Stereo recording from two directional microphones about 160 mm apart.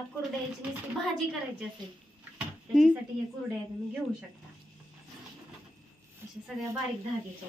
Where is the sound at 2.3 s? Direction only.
5° right (ahead or behind).